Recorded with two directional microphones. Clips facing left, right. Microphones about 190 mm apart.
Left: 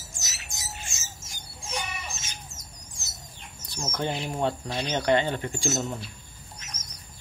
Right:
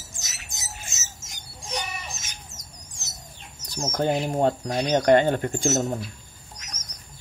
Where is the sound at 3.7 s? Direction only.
40° right (ahead or behind).